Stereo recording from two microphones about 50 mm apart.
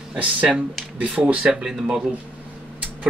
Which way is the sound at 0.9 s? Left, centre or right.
Right.